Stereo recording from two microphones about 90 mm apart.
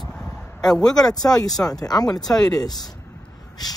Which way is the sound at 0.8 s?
45° left (ahead or behind).